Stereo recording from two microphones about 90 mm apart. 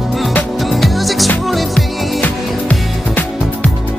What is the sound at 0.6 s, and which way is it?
Music, centre (ahead or behind).